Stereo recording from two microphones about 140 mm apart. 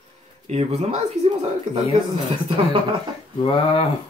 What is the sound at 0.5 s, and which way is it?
Speech, 50° right (ahead or behind).